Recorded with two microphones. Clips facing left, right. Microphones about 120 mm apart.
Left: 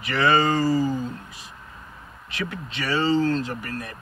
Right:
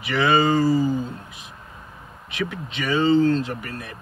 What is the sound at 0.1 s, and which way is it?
Speech, 10° right (ahead or behind).